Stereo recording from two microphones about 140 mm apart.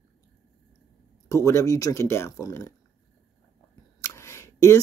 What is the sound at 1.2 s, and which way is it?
Speech, 20° left (ahead or behind).